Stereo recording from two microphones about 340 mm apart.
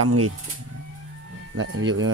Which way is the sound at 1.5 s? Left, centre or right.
Right.